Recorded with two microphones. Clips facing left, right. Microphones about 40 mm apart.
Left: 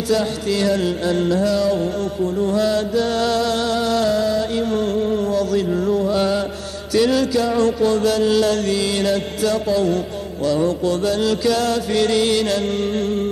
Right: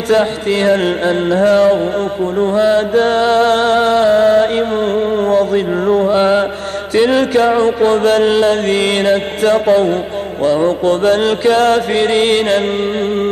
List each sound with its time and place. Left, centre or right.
0.1 s music: right